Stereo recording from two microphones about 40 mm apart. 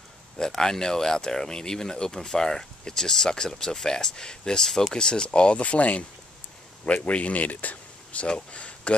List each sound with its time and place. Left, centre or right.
0.6 s speech: centre; by 8.9 s left